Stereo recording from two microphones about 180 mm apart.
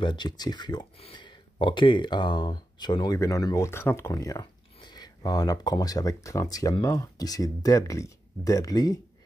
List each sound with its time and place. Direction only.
0.0 s speech: 25° left (ahead or behind)